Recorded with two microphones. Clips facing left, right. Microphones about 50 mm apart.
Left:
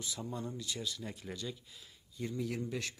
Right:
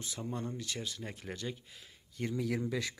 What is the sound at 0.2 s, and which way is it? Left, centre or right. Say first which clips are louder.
Speech: right 4 dB; right.